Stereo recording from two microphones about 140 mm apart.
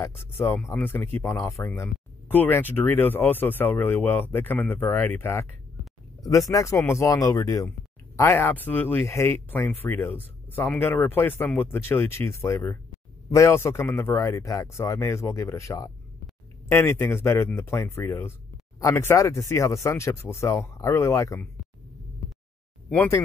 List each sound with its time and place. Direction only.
0.0 s speech: 15° left (ahead or behind)
22.8 s speech: 15° left (ahead or behind)